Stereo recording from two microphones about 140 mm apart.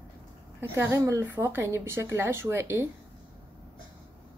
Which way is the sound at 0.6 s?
20° right (ahead or behind).